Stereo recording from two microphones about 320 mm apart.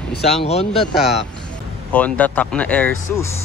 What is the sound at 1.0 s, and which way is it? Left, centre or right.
Speech, left.